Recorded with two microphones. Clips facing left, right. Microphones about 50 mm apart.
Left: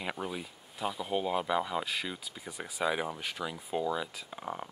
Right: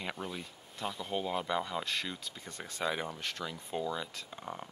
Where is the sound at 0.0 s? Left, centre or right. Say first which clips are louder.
Left 3 dB; centre.